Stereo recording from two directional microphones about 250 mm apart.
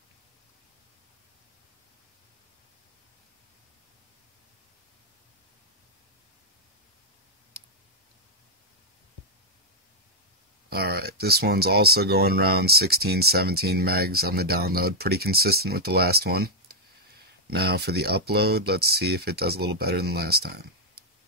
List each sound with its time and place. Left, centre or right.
10.7 s speech: right